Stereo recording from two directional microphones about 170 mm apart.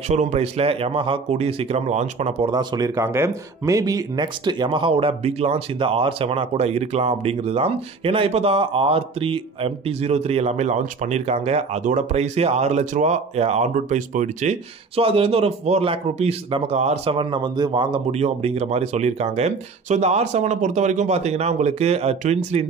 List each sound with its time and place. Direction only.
0.1 s speech: 45° right (ahead or behind)
2.5 s speech: 25° right (ahead or behind); by 22.7 s 40° right (ahead or behind)